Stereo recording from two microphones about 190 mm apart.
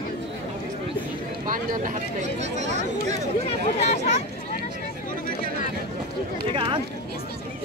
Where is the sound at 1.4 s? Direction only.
45° right (ahead or behind).